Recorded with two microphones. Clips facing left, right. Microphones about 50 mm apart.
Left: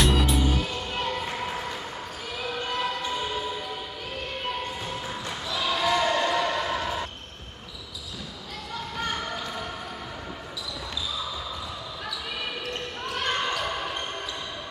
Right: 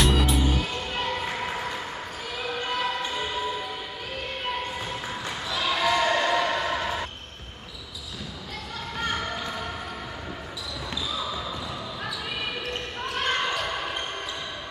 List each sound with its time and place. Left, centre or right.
0.0 s music: centre
0.9 s a sound: centre
2.3 s basketball bounce: centre
4.8 s basketball bounce: centre
9.3 s basketball bounce: centre
13.2 s basketball bounce: centre